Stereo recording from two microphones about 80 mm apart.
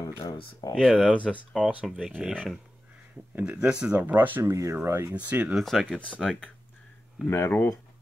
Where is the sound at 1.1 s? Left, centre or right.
Centre.